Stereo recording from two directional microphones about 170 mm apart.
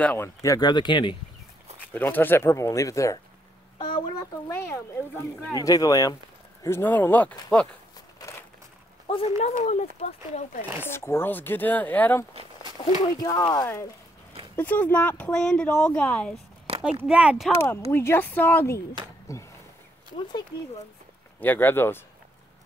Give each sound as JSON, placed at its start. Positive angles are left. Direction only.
{"t": 0.0, "sound": "speech", "side_deg": 10}
{"t": 2.0, "sound": "speech", "side_deg": 10}
{"t": 8.2, "sound": "crumpling", "side_deg": 20}
{"t": 9.0, "sound": "a sound", "side_deg": 35}
{"t": 9.4, "sound": "speech", "side_deg": 45}
{"t": 10.8, "sound": "speech", "side_deg": 15}
{"t": 13.2, "sound": "speech", "side_deg": 20}
{"t": 16.7, "sound": "a sound", "side_deg": -35}
{"t": 17.1, "sound": "speech", "side_deg": -5}
{"t": 17.6, "sound": "speech", "side_deg": 15}
{"t": 21.4, "sound": "speech", "side_deg": 10}